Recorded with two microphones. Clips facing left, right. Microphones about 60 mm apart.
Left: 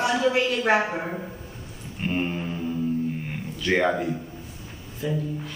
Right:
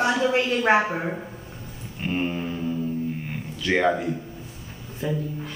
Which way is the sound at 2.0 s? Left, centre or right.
Centre.